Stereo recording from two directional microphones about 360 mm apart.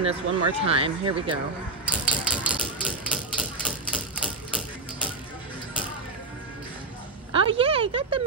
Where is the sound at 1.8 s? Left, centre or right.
Centre.